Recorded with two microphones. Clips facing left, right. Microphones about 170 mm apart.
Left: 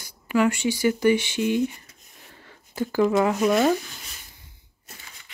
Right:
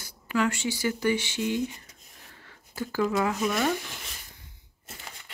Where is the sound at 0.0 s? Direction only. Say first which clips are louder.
Left 5 dB; 15° left (ahead or behind).